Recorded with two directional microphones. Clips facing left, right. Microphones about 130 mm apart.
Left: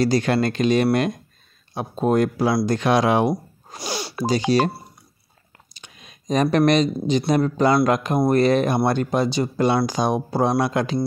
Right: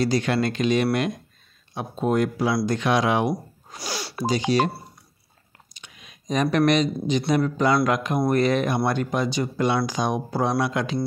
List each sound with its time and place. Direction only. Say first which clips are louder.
0.0 s speech: left 3 dB; 40° left (ahead or behind)
3.8 s speech: left 3 dB; 20° left (ahead or behind)
4.3 s speech: left 2 dB; 35° left (ahead or behind)
5.8 s speech: left 2 dB; 35° left (ahead or behind)